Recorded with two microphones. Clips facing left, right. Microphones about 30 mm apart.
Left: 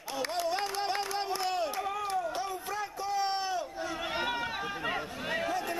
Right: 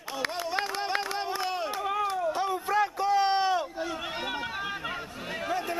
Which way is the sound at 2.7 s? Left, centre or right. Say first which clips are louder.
Right 9 dB; right.